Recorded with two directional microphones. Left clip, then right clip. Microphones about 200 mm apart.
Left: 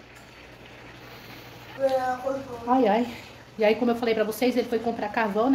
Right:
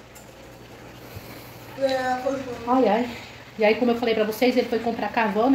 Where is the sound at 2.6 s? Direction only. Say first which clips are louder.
Right 1 dB; 15° left (ahead or behind).